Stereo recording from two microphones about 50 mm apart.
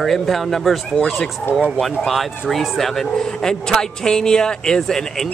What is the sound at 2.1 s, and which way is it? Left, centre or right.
A man's voice, centre.